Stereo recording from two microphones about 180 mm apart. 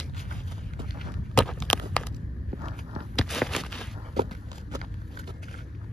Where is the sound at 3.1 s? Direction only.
Centre (ahead or behind).